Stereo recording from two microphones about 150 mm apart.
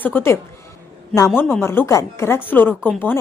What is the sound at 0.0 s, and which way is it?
A woman's voice, 15° left (ahead or behind).